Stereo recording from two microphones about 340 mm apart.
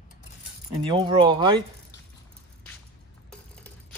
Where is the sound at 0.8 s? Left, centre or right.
Centre.